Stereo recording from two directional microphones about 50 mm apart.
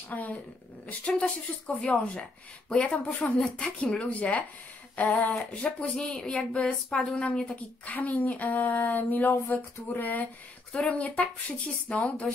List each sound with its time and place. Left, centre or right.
0.1 s speech: left
3.5 s speech: left
10.7 s speech: left